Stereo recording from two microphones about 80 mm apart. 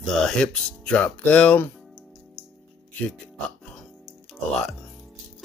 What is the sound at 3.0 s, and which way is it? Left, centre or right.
Speech, centre.